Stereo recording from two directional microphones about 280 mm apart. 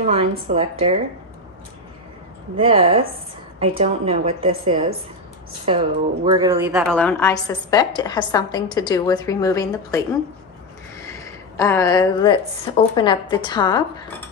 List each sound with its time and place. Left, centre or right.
0.0 s a woman's voice: right
2.6 s a woman's voice: centre
11.0 s a sound: centre
12.9 s a woman's voice: centre